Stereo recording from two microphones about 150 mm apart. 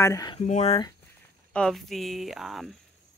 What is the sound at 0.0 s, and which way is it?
Speech, 25° left (ahead or behind).